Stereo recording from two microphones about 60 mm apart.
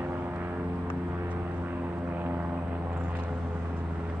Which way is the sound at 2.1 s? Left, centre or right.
Right.